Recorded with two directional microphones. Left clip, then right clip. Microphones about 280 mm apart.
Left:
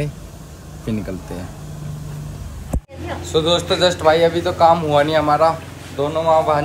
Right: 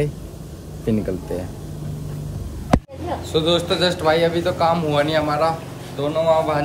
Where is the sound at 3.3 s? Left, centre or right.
Centre.